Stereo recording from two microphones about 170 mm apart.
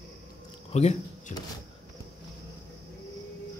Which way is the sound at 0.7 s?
40° left (ahead or behind).